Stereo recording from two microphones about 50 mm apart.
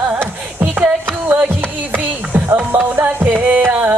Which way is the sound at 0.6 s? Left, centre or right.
Right.